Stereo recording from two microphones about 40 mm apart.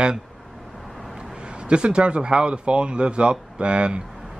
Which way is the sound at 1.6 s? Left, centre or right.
Right.